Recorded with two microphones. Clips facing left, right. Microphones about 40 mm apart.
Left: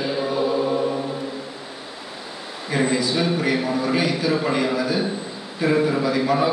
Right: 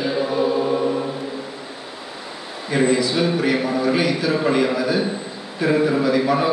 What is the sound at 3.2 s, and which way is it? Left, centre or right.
A man's voice, centre.